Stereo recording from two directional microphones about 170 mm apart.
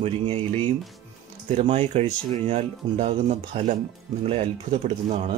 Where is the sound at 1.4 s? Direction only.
40° right (ahead or behind).